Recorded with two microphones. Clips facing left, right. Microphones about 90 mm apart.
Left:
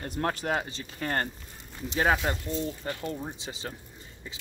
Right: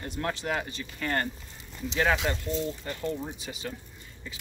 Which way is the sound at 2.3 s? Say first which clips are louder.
Even; 20° left (ahead or behind).